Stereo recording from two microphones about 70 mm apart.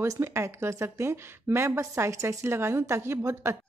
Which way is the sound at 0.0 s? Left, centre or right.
Right.